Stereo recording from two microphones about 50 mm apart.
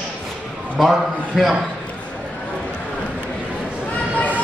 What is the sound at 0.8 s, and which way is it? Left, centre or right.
Speech, centre.